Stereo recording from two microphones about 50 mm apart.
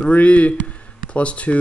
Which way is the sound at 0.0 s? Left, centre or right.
Left.